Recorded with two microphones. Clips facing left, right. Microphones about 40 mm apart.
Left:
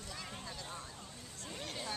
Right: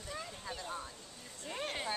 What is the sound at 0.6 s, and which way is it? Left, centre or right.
Speech, centre.